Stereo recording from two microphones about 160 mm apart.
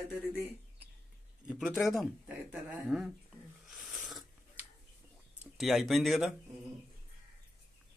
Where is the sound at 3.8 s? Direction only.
5° right (ahead or behind).